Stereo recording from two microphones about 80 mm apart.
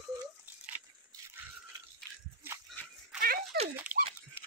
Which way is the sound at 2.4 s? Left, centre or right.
Right.